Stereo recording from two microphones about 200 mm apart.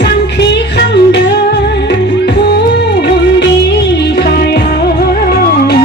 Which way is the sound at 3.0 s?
55° left (ahead or behind).